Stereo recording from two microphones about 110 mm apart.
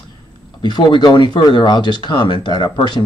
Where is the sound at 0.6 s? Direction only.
40° left (ahead or behind).